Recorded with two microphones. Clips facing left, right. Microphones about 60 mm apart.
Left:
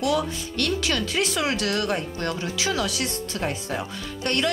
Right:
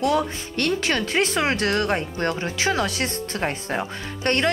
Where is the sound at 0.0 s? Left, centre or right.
Right.